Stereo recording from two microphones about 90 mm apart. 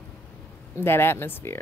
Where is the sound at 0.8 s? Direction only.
25° left (ahead or behind).